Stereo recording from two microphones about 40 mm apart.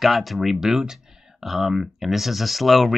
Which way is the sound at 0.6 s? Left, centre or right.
Centre.